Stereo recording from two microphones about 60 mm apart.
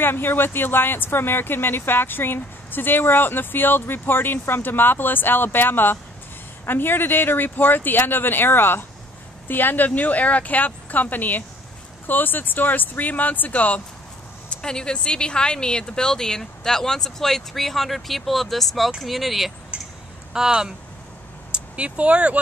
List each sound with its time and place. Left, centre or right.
0.0 s speech: left
14.5 s speech: centre
19.7 s a sound: centre
20.3 s speech: centre